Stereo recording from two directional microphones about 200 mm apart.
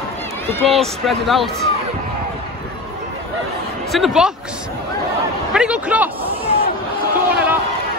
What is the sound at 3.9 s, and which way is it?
Speech, centre (ahead or behind).